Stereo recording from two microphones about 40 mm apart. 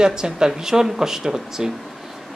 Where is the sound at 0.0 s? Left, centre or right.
Centre.